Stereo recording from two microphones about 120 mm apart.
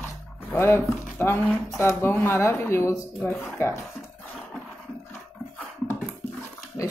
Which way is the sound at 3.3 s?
20° left (ahead or behind).